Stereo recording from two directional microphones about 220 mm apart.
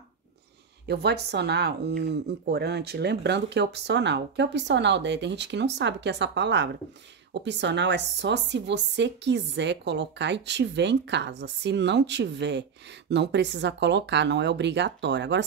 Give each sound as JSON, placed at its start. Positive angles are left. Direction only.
{"t": 0.8, "sound": "speech", "side_deg": -50}